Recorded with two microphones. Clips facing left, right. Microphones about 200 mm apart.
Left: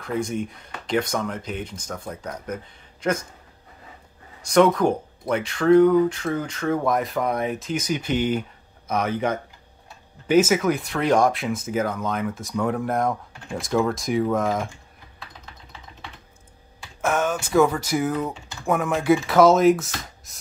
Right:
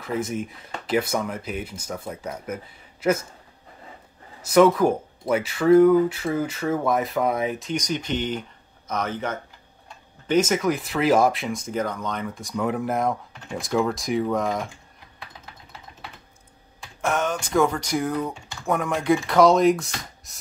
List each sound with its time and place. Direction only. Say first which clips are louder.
0.0 s speech: left 1 dB; 5° right (ahead or behind)
4.4 s speech: right 1 dB; 5° right (ahead or behind)
17.0 s speech: left 1 dB; 5° left (ahead or behind)